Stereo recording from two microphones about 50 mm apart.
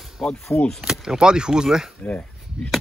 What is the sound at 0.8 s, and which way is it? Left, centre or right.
Speech, centre.